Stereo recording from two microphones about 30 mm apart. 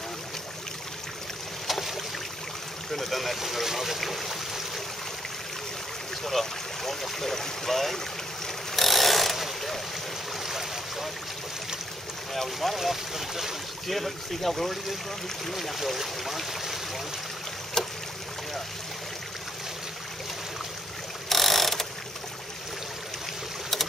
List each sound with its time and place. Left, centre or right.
1.7 s boat: centre
2.9 s speech: centre
6.2 s speech: centre
8.7 s a sound: centre
10.4 s boat: centre
12.5 s speech: centre
13.8 s speech: centre
17.8 s boat: centre
21.3 s mechanisms: centre